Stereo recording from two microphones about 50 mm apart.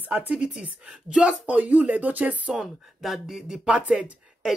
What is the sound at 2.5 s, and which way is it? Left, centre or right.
Speech, centre.